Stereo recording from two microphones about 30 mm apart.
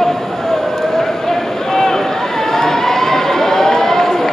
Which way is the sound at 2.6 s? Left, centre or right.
Centre.